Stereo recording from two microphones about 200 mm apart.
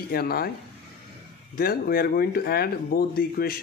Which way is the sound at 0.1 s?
50° left (ahead or behind).